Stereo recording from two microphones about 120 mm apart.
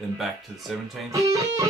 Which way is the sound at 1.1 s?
25° right (ahead or behind).